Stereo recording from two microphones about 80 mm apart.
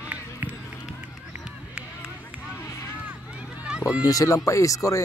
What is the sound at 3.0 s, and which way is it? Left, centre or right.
Run, centre.